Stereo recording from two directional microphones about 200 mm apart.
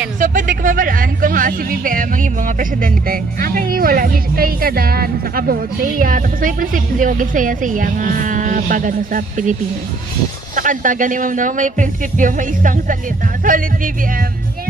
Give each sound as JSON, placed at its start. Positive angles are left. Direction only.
{"t": 0.2, "sound": "speech", "side_deg": -40}